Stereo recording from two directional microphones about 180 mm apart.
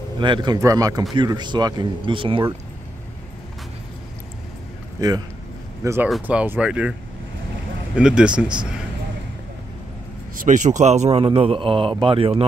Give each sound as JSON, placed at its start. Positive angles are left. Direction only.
{"t": 0.2, "sound": "speech", "side_deg": -25}
{"t": 6.0, "sound": "speech", "side_deg": -5}
{"t": 10.3, "sound": "speech", "side_deg": -45}